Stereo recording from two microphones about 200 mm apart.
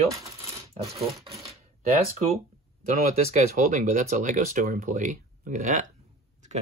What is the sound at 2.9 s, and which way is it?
Speech, 40° right (ahead or behind).